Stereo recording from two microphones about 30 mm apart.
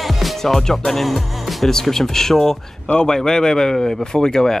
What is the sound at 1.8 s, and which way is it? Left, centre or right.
Speech, centre.